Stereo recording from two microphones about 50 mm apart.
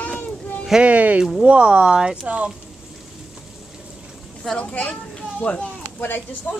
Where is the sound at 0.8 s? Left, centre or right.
Right.